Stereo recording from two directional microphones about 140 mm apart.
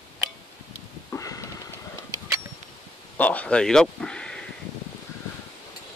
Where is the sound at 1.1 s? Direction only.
20° left (ahead or behind).